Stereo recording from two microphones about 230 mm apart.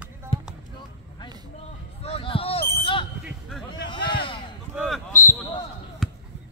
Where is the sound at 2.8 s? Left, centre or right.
Left.